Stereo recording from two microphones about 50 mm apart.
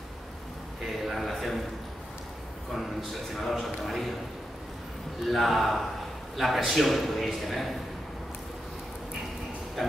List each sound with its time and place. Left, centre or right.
0.8 s speech: centre
2.7 s a man's voice: centre
5.2 s a man's voice: centre
9.8 s music: centre